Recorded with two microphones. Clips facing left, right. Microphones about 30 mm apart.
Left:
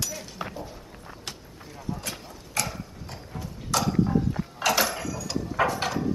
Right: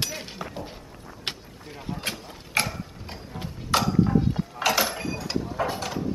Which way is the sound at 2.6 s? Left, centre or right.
Right.